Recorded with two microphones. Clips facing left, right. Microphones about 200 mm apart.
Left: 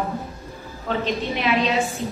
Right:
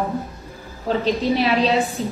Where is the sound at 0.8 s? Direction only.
35° right (ahead or behind).